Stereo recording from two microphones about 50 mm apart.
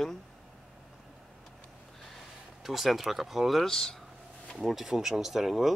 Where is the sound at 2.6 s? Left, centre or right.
Centre.